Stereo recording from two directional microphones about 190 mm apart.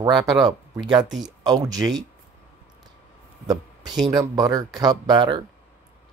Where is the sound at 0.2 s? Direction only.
20° right (ahead or behind).